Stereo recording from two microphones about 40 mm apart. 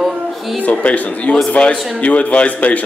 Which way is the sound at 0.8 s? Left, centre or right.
Left.